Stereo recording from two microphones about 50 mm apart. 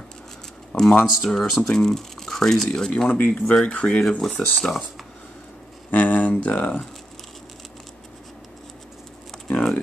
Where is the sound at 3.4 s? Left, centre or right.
Centre.